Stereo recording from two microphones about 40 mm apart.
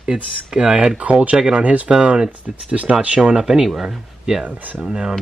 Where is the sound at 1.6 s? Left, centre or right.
Right.